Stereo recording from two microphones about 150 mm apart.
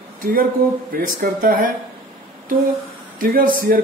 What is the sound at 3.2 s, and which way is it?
Speech, 70° right (ahead or behind).